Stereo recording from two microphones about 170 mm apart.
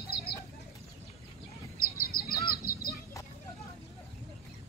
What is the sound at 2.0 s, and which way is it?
Honk, 60° left (ahead or behind).